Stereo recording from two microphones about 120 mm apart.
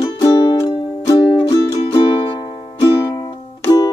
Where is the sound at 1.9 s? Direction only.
40° left (ahead or behind).